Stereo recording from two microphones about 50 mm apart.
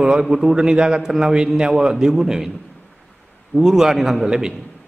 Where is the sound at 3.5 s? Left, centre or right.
Centre.